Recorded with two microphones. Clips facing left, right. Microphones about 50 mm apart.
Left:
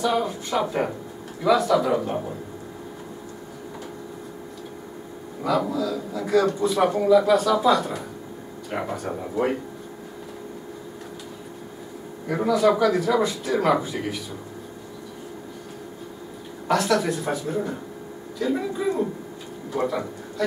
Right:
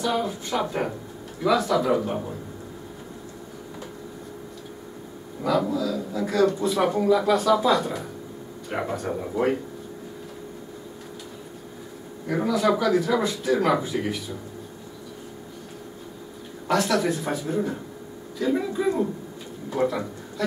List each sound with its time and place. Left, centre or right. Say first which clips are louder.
0.0 s speech: left 2 dB; centre
5.4 s speech: even; centre
12.3 s speech: left 2 dB; centre
16.6 s speech: left 1 dB; centre